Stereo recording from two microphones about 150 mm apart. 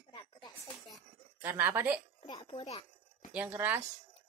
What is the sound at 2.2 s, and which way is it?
Speech, 30° left (ahead or behind).